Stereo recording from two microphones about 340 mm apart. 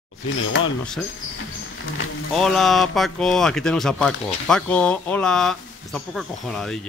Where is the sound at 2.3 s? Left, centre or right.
Centre.